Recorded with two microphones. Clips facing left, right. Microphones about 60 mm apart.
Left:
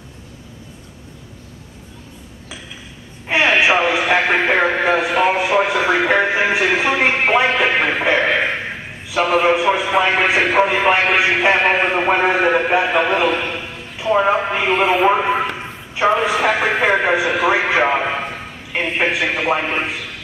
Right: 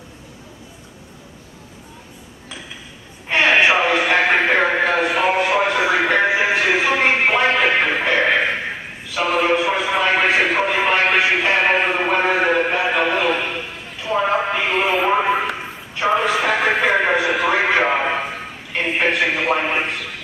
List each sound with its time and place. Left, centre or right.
3.3 s radio: centre
6.5 s music: centre
9.2 s a sound: centre
11.5 s speech: centre
14.1 s speech: centre
14.5 s a sound: centre
18.9 s a man's voice: centre